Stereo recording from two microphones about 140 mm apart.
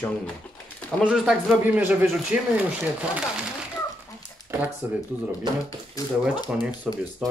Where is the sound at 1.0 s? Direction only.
5° right (ahead or behind).